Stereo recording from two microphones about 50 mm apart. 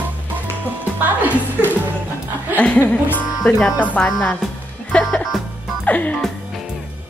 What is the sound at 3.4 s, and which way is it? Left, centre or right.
Speech, left.